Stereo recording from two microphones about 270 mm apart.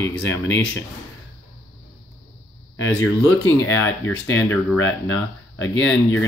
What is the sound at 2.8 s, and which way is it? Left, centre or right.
Speech, left.